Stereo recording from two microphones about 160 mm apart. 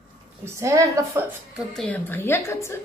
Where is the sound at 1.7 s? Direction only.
10° left (ahead or behind).